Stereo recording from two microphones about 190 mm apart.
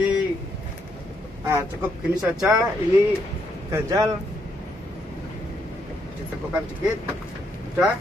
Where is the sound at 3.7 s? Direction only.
15° right (ahead or behind).